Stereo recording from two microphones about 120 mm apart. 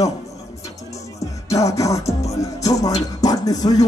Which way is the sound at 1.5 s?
25° left (ahead or behind).